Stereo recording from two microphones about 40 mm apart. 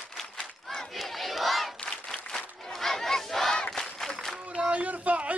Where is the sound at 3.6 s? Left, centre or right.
Centre.